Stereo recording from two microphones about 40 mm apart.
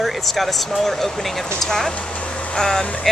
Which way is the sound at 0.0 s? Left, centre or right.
Centre.